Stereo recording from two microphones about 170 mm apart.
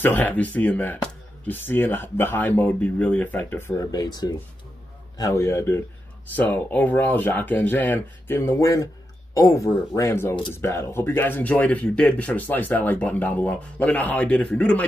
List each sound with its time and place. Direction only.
0.0 s speech: 10° left (ahead or behind)